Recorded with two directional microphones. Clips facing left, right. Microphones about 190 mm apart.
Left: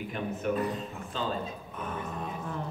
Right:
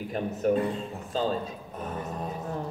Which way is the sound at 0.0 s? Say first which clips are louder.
Right 5 dB; 40° right (ahead or behind).